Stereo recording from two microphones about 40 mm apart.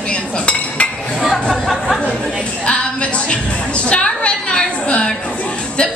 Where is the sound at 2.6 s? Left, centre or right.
Left.